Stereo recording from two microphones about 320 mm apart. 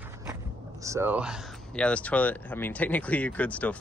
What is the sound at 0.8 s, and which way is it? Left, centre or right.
Speech, centre.